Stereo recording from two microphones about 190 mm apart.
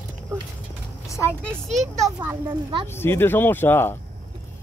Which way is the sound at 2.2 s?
20° right (ahead or behind).